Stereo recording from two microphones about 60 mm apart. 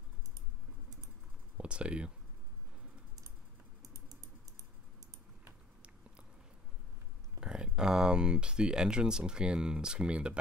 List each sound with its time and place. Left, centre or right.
1.6 s speech: centre
7.3 s speech: centre